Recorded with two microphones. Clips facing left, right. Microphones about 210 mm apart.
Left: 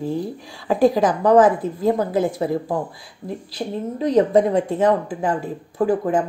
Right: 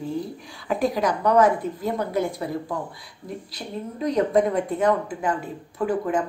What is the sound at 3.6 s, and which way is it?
Speech, 40° left (ahead or behind).